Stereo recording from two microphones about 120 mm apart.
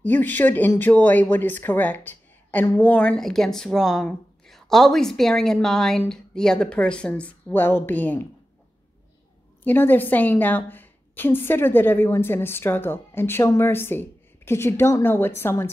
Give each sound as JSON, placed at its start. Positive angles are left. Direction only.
{"t": 0.0, "sound": "speech", "side_deg": 15}
{"t": 9.6, "sound": "a woman's voice", "side_deg": 15}